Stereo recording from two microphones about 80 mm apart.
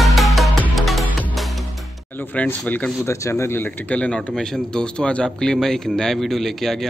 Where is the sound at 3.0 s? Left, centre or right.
Left.